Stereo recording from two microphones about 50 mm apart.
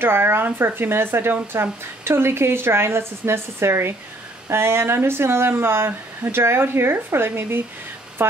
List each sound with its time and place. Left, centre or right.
0.0 s a woman's voice: right